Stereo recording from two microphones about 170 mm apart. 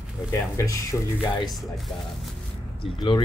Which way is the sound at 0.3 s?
20° left (ahead or behind).